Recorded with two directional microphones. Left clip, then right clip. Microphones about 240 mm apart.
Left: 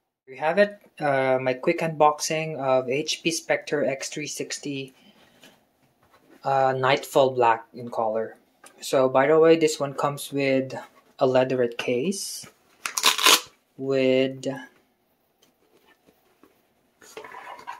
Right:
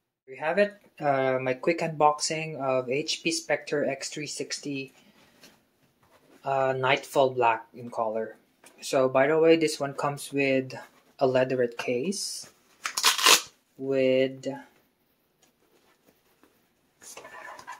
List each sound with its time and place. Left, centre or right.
0.3 s speech: centre
6.4 s speech: centre
13.8 s speech: centre